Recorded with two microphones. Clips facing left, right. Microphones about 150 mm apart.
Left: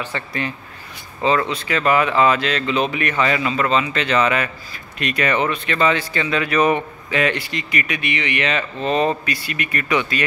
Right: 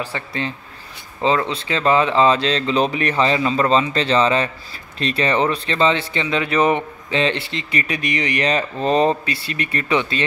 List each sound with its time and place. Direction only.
0.1 s a man's voice: 15° right (ahead or behind)